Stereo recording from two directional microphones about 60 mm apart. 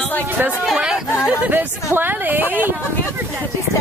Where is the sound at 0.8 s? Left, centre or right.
Centre.